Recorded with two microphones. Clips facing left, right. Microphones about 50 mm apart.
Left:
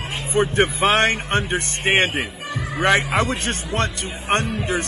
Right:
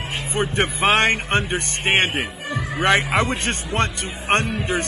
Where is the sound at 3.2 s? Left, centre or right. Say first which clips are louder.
Even; right.